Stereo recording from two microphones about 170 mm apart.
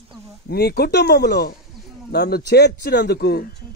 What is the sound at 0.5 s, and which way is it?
A man's voice, 70° left (ahead or behind).